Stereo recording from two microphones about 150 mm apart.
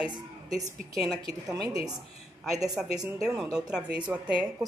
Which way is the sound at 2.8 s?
Centre (ahead or behind).